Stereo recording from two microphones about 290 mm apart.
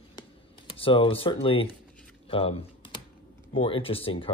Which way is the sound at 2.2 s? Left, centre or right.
Centre.